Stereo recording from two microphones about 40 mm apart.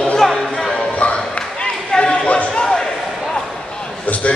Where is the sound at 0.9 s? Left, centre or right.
Left.